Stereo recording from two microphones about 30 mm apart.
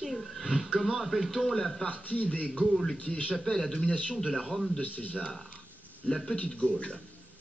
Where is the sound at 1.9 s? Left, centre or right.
Left.